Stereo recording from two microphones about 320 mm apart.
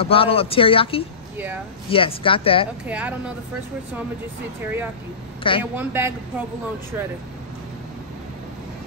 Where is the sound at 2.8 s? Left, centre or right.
Centre.